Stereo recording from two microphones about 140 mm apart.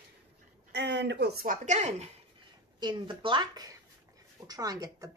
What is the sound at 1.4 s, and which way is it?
Speech, 70° right (ahead or behind).